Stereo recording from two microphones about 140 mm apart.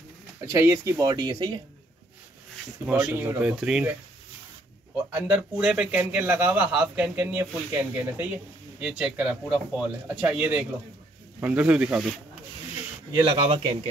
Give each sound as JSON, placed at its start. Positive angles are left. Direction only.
{"t": 0.5, "sound": "speech", "side_deg": -20}
{"t": 2.9, "sound": "a man's voice", "side_deg": -10}
{"t": 5.1, "sound": "a man's voice", "side_deg": -10}
{"t": 13.1, "sound": "speech", "side_deg": -30}